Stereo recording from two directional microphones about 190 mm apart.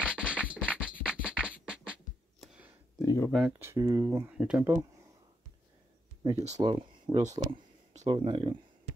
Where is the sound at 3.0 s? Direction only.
20° left (ahead or behind).